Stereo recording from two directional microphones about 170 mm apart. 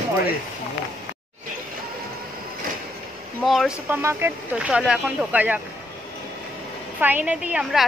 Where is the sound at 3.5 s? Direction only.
Centre (ahead or behind).